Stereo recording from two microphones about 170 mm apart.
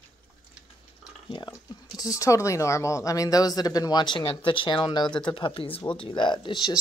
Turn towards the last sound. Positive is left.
turn(degrees=25)  # may be behind; listen again after turning